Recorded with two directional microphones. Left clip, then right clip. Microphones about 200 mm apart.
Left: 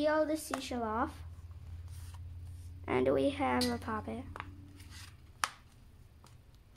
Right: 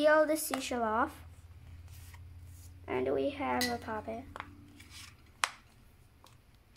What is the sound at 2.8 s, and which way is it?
Speech, 25° left (ahead or behind).